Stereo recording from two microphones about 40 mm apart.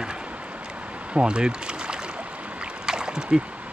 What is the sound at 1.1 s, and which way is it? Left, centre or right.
Speech, right.